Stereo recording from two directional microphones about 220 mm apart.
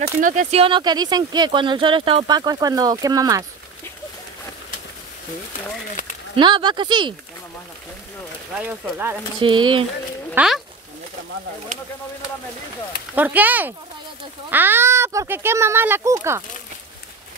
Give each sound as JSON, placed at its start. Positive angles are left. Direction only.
{"t": 0.2, "sound": "speech", "side_deg": -35}
{"t": 6.3, "sound": "speech", "side_deg": -20}
{"t": 8.5, "sound": "speech", "side_deg": -10}
{"t": 9.4, "sound": "speech", "side_deg": -20}
{"t": 10.3, "sound": "speech", "side_deg": -5}
{"t": 13.1, "sound": "speech", "side_deg": -10}